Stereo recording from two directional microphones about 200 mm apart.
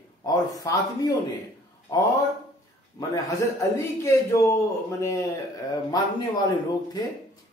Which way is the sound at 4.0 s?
15° left (ahead or behind).